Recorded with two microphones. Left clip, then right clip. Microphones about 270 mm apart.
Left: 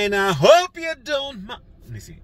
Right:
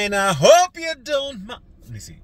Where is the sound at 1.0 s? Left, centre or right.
Centre.